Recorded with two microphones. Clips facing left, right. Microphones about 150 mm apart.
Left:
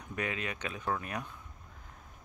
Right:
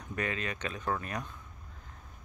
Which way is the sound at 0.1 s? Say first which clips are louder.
Right 1 dB; 10° left (ahead or behind).